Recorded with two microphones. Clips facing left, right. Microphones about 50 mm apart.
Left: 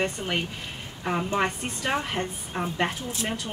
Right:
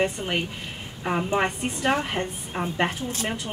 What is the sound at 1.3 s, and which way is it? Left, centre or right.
Speech, centre.